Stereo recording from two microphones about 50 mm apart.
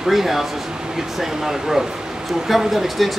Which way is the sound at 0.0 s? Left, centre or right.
Centre.